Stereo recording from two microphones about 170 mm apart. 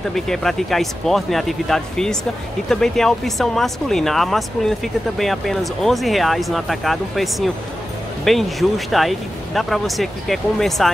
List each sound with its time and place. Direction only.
0.1 s speech: centre (ahead or behind)